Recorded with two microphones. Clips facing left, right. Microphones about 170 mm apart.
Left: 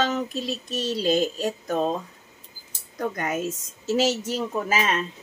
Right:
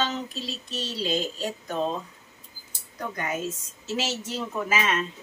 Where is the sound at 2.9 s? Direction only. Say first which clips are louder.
Left 4 dB; 45° left (ahead or behind).